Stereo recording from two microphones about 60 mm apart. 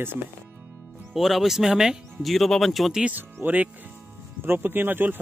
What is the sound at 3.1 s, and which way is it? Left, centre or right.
Speech, right.